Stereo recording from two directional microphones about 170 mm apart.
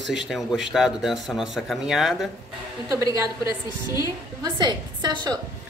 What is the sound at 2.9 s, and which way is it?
Speech, 20° right (ahead or behind).